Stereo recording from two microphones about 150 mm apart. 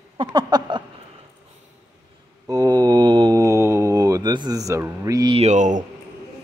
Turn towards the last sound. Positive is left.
turn(degrees=-55)  # may be behind; listen again after turning